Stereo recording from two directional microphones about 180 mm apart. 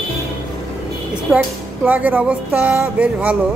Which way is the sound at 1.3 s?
5° right (ahead or behind).